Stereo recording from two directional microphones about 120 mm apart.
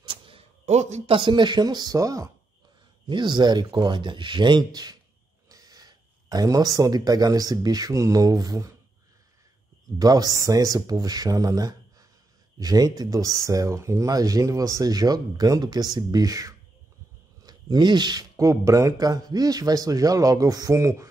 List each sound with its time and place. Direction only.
0.0 s a sound: 45° right (ahead or behind)
0.7 s speech: 70° right (ahead or behind); by 2.3 s 30° right (ahead or behind)
3.1 s speech: 40° right (ahead or behind)
9.9 s speech: 30° right (ahead or behind)